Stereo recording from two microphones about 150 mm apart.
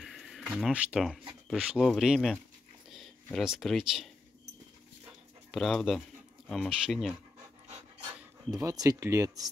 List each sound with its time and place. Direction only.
0.0 s speech: centre (ahead or behind)
5.5 s speech: centre (ahead or behind)
8.5 s speech: 20° right (ahead or behind)